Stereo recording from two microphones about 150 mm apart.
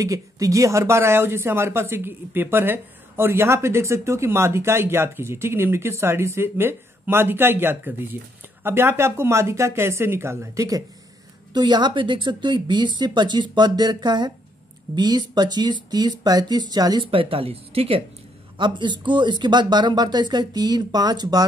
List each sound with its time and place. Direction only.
0.0 s speech: 20° right (ahead or behind)